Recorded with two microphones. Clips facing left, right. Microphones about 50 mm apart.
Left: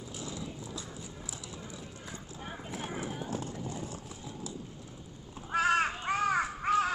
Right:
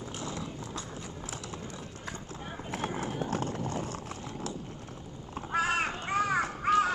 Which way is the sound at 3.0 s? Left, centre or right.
Right.